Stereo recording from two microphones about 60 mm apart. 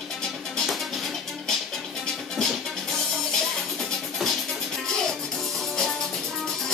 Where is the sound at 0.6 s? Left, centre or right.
Centre.